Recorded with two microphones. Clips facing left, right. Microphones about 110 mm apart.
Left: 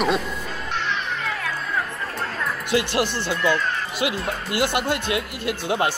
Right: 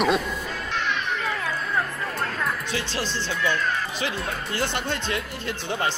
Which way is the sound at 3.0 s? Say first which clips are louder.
Left 4 dB; 15° left (ahead or behind).